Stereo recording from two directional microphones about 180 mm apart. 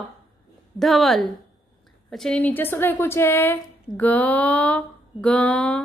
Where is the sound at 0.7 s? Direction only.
Centre (ahead or behind).